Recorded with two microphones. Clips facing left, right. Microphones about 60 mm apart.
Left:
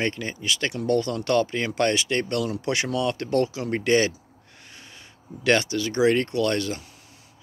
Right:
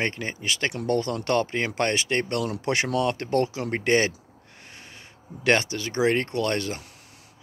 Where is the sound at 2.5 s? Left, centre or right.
Right.